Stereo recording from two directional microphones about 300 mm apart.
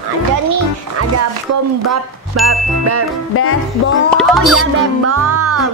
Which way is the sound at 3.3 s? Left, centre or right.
Left.